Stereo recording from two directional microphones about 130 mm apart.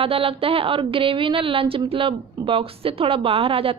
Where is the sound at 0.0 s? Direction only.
45° right (ahead or behind).